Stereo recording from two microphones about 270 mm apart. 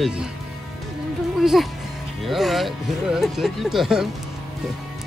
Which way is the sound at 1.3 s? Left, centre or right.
Centre.